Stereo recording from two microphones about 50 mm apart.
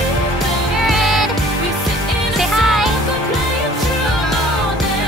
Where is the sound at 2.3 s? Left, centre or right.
Centre.